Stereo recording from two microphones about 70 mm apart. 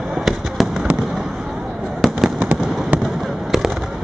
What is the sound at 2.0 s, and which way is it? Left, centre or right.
Fireworks, centre.